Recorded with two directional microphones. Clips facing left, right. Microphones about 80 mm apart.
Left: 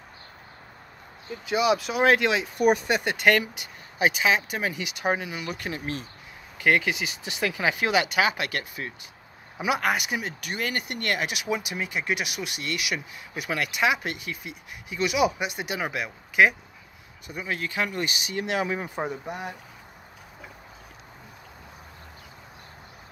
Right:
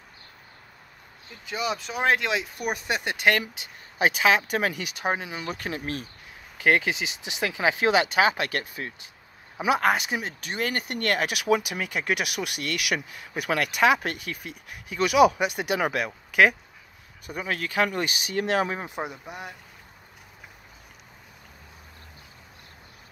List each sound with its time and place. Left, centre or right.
1.5 s speech: centre
4.0 s speech: right
5.0 s speech: right
18.8 s speech: centre
19.0 s speech: centre